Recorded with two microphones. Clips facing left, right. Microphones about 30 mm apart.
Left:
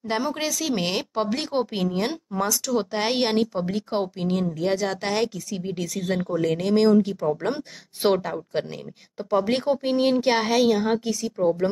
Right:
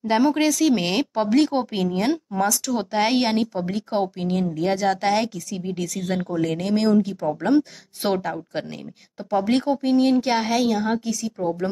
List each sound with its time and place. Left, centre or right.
0.0 s a woman's voice: centre
10.3 s a woman's voice: centre